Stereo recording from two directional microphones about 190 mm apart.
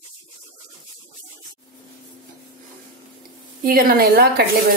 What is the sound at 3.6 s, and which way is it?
Speech, 50° right (ahead or behind).